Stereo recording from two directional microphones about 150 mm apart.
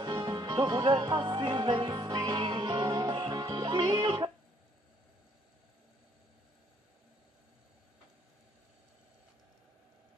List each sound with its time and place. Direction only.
0.0 s music: 30° right (ahead or behind)